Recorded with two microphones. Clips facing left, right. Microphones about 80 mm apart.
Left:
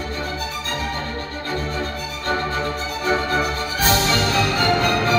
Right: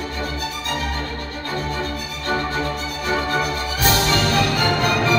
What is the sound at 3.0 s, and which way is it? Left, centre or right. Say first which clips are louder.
Music: left 1 dB; left.